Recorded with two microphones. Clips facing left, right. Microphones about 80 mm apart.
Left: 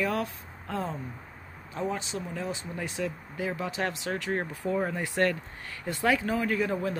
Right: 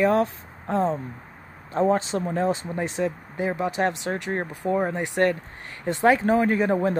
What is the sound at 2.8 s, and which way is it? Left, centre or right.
Speech, right.